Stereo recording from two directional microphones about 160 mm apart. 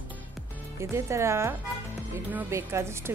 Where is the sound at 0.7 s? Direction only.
20° right (ahead or behind).